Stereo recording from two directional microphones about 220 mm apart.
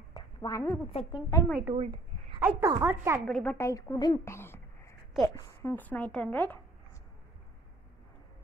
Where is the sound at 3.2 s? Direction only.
5° left (ahead or behind).